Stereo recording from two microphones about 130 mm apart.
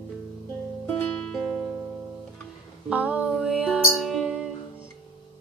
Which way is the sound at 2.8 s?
10° right (ahead or behind).